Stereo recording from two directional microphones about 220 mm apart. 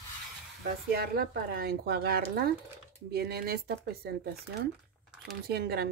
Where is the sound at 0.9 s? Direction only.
45° right (ahead or behind).